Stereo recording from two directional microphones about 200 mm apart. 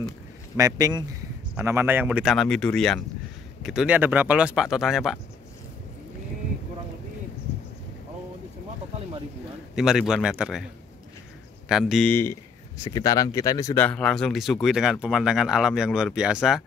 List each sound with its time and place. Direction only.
0.6 s speech: 15° right (ahead or behind)
9.8 s speech: 5° right (ahead or behind)
11.7 s speech: centre (ahead or behind)
13.8 s speech: 5° left (ahead or behind)